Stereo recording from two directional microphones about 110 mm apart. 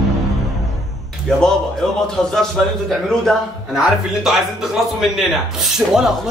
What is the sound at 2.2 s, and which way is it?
A man's voice, 5° left (ahead or behind).